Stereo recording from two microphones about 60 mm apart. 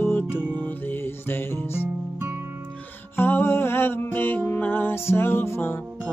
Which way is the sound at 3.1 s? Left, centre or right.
Left.